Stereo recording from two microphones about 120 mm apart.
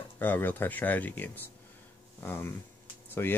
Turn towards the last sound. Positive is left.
turn(degrees=15)  # may be behind; listen again after turning